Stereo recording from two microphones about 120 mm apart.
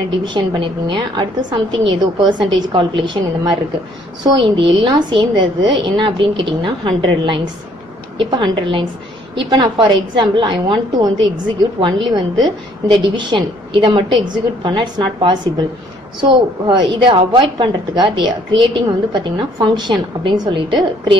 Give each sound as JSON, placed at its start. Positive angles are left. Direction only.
{"t": 0.2, "sound": "a woman's voice", "side_deg": -40}
{"t": 16.6, "sound": "a woman's voice", "side_deg": -40}